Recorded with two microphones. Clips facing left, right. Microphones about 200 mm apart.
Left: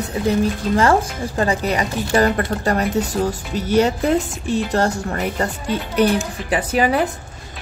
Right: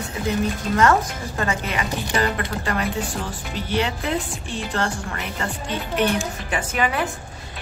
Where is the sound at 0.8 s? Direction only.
30° left (ahead or behind).